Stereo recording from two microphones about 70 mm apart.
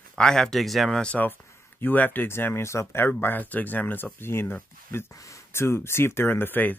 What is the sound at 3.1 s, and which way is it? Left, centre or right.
Speech, left.